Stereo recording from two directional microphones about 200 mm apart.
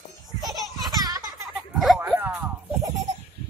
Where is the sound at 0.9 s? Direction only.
20° right (ahead or behind).